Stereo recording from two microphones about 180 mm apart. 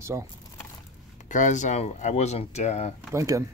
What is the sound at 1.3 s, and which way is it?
Speech, 45° left (ahead or behind).